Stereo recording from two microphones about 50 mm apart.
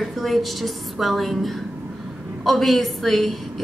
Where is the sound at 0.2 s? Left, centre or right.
Centre.